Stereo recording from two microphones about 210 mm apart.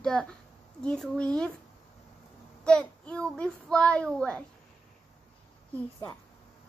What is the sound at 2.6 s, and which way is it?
A child's voice, 5° left (ahead or behind).